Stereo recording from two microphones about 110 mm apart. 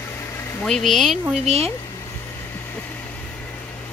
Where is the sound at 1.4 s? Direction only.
70° right (ahead or behind).